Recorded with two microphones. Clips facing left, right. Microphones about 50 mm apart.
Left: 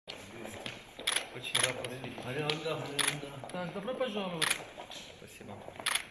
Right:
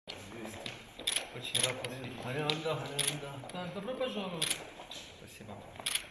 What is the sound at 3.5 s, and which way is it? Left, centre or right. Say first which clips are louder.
Speech: left 3 dB; left.